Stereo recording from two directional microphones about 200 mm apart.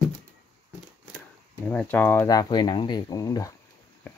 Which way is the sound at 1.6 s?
10° left (ahead or behind).